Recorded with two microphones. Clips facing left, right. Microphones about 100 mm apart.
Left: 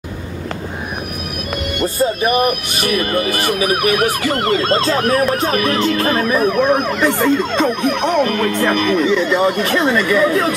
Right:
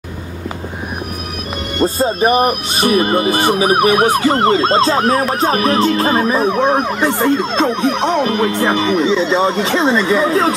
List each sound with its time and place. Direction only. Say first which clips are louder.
1.8 s speech: right 3 dB; 25° right (ahead or behind)